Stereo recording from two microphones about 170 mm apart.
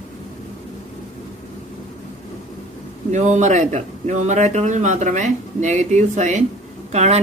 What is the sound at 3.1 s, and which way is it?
Speech, 45° right (ahead or behind).